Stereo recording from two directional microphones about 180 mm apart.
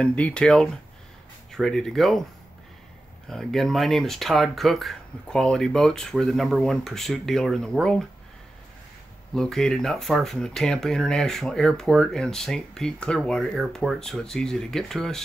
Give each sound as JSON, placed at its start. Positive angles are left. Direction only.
{"t": 0.0, "sound": "speech", "side_deg": 5}
{"t": 3.3, "sound": "speech", "side_deg": 0}
{"t": 9.3, "sound": "speech", "side_deg": 5}